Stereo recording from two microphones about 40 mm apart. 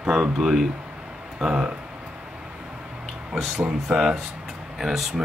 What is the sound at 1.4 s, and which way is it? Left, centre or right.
Speech, right.